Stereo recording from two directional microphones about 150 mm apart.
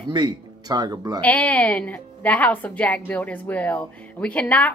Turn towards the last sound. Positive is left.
turn(degrees=10)  # may be behind; listen again after turning